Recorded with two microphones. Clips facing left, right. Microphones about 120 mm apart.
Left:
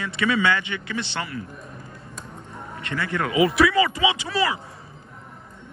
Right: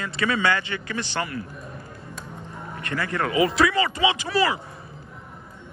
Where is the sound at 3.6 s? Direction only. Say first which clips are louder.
Left 2 dB; 25° right (ahead or behind).